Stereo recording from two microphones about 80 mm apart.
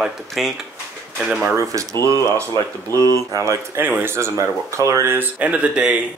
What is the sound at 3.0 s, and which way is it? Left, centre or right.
Speech, left.